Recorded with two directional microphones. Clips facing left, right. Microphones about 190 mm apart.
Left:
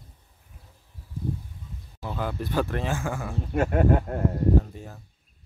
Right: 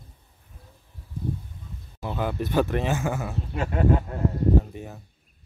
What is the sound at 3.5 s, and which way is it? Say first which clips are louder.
Speech: left 2 dB; 50° left (ahead or behind).